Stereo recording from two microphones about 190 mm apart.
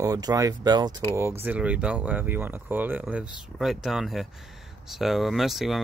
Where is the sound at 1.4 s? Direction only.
5° right (ahead or behind).